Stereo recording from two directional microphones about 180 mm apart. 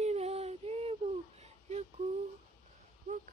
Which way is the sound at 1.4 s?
35° right (ahead or behind).